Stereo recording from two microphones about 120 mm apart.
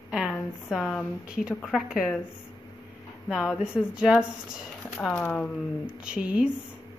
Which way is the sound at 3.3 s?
5° right (ahead or behind).